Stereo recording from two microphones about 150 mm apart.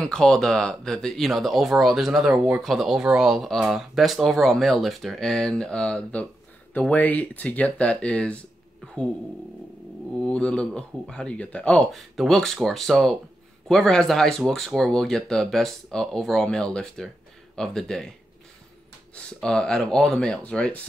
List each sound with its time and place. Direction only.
0.0 s speech: 5° left (ahead or behind)
10.2 s speech: 5° left (ahead or behind)
19.1 s speech: 5° left (ahead or behind)